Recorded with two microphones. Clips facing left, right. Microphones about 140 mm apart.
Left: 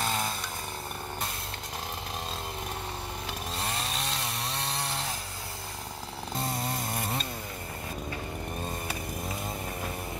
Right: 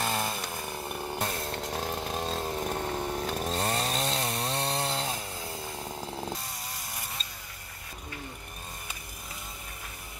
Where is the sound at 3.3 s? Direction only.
40° right (ahead or behind).